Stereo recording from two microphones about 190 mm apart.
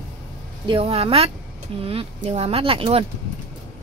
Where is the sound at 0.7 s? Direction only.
30° right (ahead or behind).